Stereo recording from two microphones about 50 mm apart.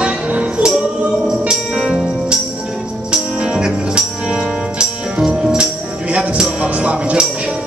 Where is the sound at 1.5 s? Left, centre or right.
Centre.